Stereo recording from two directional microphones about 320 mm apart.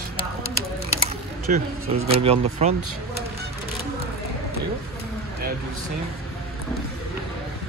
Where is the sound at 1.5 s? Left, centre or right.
Right.